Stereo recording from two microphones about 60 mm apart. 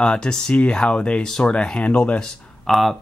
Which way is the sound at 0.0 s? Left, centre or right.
Centre.